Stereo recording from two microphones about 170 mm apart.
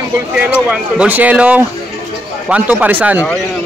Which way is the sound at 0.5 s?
5° right (ahead or behind).